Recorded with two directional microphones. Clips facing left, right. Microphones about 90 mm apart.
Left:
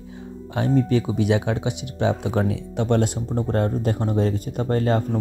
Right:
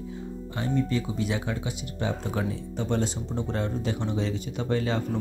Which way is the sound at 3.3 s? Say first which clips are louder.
Left 8 dB; 50° left (ahead or behind).